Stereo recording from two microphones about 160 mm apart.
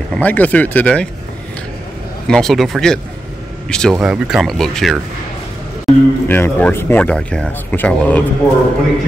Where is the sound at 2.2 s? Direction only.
5° left (ahead or behind).